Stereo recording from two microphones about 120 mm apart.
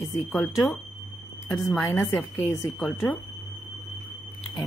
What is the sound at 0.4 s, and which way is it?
Speech, centre (ahead or behind).